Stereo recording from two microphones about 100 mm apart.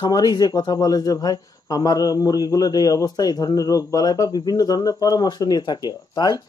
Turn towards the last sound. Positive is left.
turn(degrees=45)  # may be behind; listen again after turning